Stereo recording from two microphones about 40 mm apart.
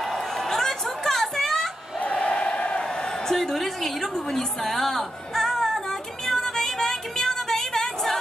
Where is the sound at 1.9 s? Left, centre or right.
Left.